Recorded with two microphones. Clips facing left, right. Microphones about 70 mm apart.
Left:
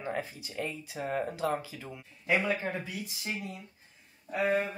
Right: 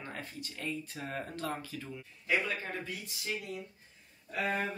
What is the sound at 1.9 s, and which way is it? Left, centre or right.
Speech, centre.